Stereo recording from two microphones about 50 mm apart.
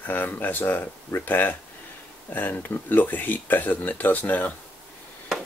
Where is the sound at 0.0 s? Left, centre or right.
Left.